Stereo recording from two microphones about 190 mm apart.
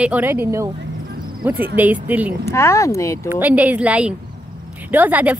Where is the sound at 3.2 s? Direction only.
10° right (ahead or behind).